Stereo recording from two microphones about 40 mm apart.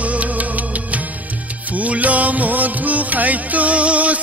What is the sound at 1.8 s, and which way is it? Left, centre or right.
Music, right.